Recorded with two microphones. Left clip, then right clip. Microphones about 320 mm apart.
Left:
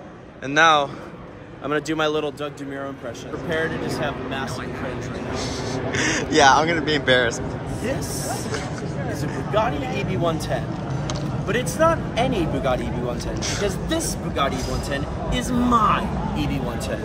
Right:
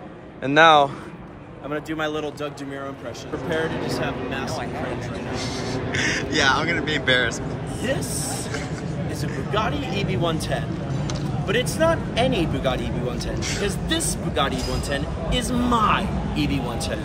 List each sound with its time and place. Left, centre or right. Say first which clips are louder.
0.5 s speech: right 2 dB; centre
1.7 s a man's voice: left 4 dB; left
3.4 s speech: left 1 dB; centre
6.3 s speech: left 6 dB; centre
9.5 s speech: left 3 dB; centre